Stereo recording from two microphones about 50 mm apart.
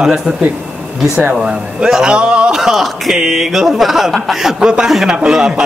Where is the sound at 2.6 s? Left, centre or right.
Centre.